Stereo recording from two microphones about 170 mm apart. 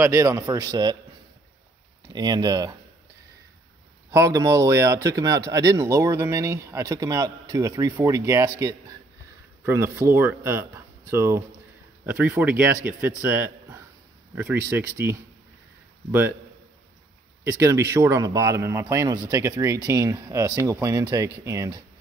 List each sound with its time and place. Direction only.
0.0 s speech: 15° right (ahead or behind)
2.0 s speech: 25° right (ahead or behind)
4.1 s a man's voice: 20° right (ahead or behind)
17.5 s speech: 15° right (ahead or behind)